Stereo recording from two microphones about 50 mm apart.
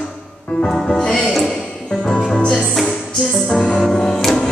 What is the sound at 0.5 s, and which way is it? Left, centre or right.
Music, centre.